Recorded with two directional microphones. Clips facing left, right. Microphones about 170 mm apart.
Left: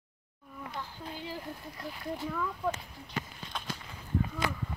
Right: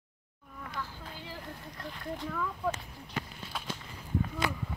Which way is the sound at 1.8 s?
5° left (ahead or behind).